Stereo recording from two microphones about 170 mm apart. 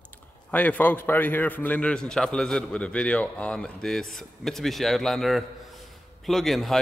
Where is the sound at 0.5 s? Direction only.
10° left (ahead or behind).